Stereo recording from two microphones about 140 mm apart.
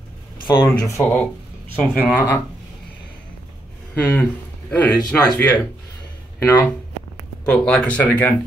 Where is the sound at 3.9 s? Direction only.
15° left (ahead or behind).